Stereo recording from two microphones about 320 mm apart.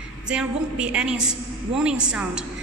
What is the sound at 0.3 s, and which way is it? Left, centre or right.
A man's voice, centre.